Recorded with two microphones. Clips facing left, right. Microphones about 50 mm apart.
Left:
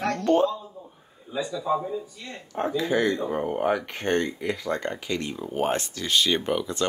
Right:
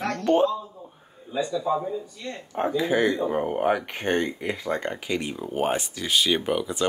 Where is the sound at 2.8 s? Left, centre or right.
Centre.